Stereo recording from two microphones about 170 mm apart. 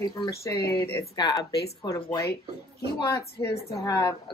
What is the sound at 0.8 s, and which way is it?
Speech, 20° left (ahead or behind).